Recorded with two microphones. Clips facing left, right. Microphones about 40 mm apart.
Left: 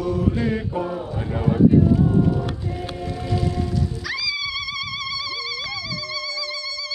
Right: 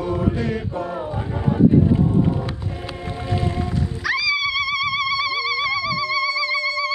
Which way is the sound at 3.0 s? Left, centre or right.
Right.